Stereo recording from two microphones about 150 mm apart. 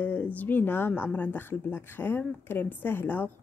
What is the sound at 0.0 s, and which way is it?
Speech, 10° left (ahead or behind).